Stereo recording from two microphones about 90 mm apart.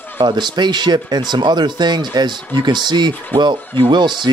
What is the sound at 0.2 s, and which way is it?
Speech, 55° right (ahead or behind).